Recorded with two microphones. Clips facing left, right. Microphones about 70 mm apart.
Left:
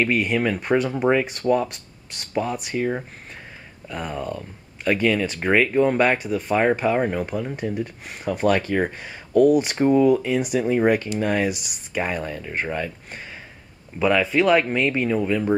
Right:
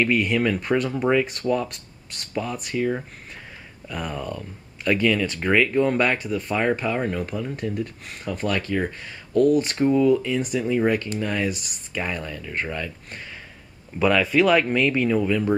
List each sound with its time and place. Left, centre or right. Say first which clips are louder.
0.0 s speech: even; centre
3.9 s speech: left 1 dB; centre
6.6 s speech: left 4 dB; centre
8.3 s speech: left 5 dB; left
9.8 s speech: left 2 dB; left
10.7 s speech: left 2 dB; left
11.3 s speech: left 3 dB; centre
13.9 s speech: even; centre